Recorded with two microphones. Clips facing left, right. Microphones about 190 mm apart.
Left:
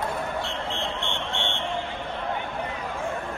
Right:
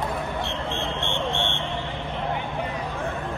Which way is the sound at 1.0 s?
15° left (ahead or behind).